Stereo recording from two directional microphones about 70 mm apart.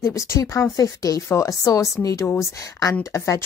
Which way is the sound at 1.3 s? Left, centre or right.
Left.